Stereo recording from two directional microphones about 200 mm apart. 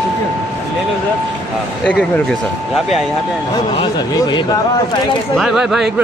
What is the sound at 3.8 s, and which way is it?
Speech, 25° left (ahead or behind).